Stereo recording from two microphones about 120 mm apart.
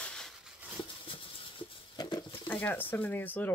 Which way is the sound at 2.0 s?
40° left (ahead or behind).